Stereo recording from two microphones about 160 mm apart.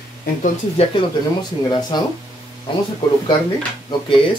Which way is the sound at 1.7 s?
25° left (ahead or behind).